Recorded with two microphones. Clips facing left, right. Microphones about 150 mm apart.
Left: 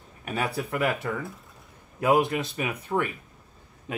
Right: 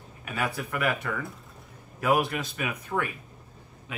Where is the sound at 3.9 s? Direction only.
40° left (ahead or behind).